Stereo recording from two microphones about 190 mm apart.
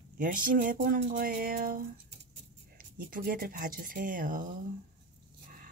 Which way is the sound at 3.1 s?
50° right (ahead or behind).